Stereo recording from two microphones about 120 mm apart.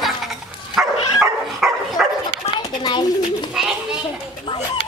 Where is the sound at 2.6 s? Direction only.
35° left (ahead or behind).